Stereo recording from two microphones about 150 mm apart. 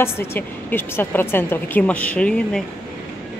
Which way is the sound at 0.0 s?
15° left (ahead or behind).